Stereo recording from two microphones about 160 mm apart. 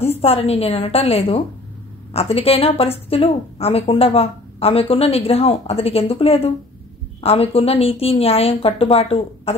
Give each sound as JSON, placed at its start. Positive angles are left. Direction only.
{"t": 0.0, "sound": "a woman's voice", "side_deg": 40}